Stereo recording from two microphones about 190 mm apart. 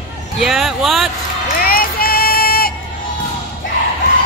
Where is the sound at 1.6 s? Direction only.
50° left (ahead or behind).